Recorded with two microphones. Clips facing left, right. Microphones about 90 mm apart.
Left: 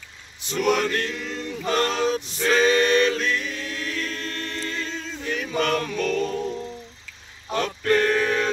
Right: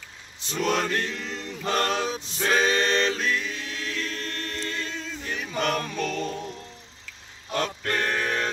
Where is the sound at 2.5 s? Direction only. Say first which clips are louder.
Left 5 dB; 30° right (ahead or behind).